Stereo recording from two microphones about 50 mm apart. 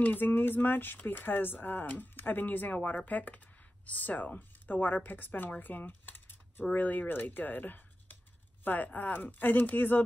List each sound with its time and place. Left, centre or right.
0.0 s speech: left
5.6 s a sound: left
6.7 s speech: left